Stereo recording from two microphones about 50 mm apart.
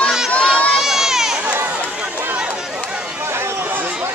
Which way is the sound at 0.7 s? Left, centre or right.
Centre.